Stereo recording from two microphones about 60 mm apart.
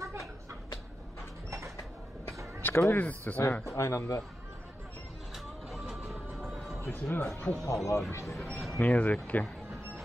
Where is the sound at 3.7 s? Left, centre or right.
Left.